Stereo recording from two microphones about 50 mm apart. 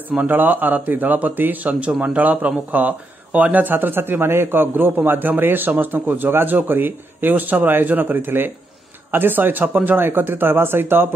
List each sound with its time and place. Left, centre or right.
0.1 s a man's voice: right